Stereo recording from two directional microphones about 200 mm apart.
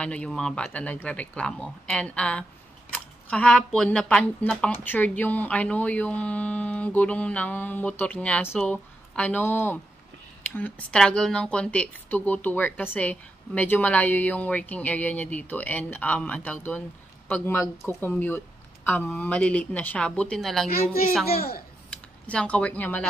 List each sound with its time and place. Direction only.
0.0 s speech: 5° left (ahead or behind)
21.4 s a child's voice: 50° left (ahead or behind)
22.2 s speech: 5° left (ahead or behind)